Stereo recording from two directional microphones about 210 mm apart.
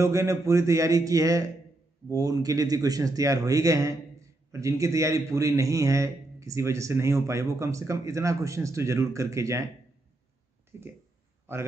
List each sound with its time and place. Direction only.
0.0 s speech: 15° right (ahead or behind)
10.7 s speech: 10° right (ahead or behind)